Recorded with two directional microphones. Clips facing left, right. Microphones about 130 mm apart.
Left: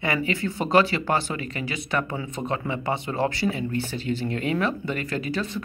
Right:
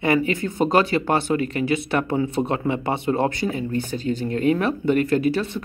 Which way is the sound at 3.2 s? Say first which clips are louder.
Right 2 dB; 50° right (ahead or behind).